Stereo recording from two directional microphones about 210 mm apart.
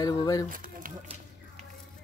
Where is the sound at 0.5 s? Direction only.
40° right (ahead or behind).